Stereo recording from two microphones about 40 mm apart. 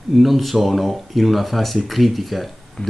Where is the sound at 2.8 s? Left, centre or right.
Left.